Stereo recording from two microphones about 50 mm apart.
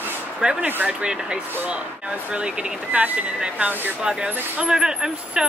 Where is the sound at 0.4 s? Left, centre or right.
Centre.